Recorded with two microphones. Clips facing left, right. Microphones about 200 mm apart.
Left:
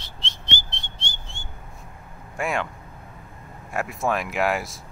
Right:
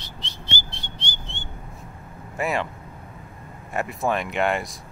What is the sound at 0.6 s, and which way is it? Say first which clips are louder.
Whistling: right 2 dB; 25° left (ahead or behind).